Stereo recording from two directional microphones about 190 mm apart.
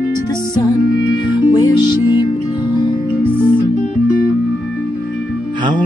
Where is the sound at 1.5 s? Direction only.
20° left (ahead or behind).